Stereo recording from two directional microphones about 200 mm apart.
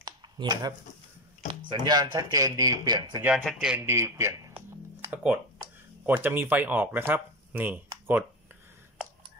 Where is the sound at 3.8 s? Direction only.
15° right (ahead or behind).